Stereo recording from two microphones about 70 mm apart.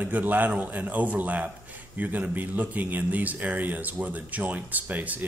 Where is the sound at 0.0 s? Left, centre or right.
Right.